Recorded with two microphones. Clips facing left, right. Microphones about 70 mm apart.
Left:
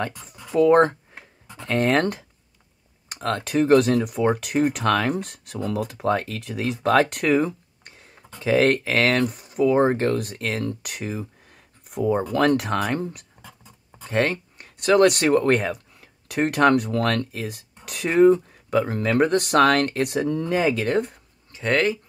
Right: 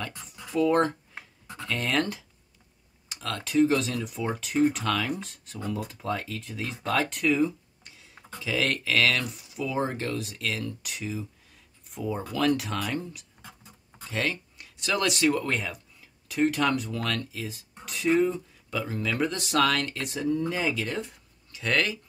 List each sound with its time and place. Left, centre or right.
0.6 s speech: left
21.5 s speech: left